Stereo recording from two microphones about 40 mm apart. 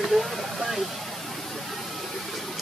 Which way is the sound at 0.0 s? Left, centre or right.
Centre.